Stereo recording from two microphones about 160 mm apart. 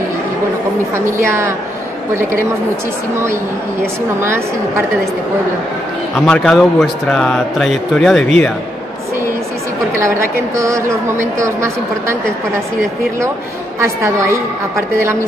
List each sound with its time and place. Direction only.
0.9 s a woman's voice: 15° right (ahead or behind)
4.2 s a woman's voice: 15° right (ahead or behind)
6.1 s speech: 5° left (ahead or behind)
9.9 s a woman's voice: 15° right (ahead or behind)
14.8 s a woman's voice: 15° right (ahead or behind)